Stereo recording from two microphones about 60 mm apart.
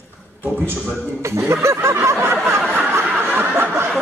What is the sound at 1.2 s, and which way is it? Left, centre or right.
Speech, right.